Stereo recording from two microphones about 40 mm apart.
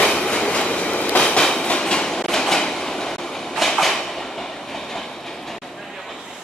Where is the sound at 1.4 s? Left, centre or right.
Centre.